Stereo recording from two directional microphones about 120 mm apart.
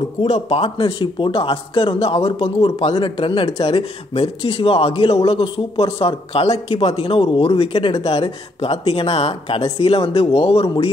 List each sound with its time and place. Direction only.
0.2 s speech: 55° left (ahead or behind)
2.1 s speech: 30° left (ahead or behind)
2.9 s speech: 40° left (ahead or behind)